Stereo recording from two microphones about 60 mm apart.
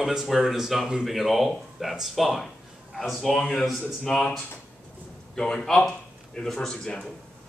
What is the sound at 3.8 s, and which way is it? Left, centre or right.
Speech, centre.